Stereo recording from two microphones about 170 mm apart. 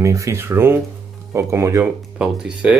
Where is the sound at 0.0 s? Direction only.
20° right (ahead or behind).